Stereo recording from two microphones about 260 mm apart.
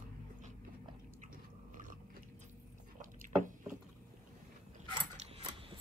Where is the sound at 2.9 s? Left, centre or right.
Right.